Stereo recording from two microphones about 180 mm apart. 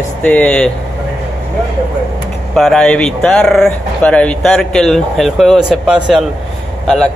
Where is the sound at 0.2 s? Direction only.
10° left (ahead or behind).